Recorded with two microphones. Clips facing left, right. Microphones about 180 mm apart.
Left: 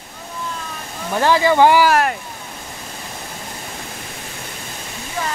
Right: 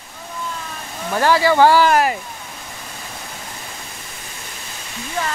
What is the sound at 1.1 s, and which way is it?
Speech, 20° left (ahead or behind).